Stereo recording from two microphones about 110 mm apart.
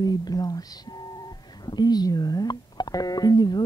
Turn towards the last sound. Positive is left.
turn(degrees=40)  # may be behind; listen again after turning